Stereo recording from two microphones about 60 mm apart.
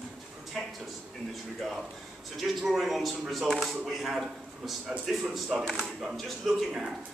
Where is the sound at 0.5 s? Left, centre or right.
Centre.